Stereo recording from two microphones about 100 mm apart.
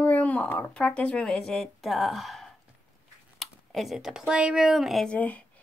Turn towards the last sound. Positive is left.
turn(degrees=15)  # may be behind; listen again after turning